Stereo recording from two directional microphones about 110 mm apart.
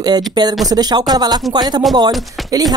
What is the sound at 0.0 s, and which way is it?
Speech, 40° right (ahead or behind).